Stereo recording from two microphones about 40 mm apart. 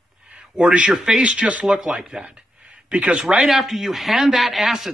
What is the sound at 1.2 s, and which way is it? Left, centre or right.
Speech, right.